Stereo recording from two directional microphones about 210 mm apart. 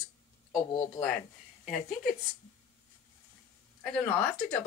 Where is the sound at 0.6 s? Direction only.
15° left (ahead or behind).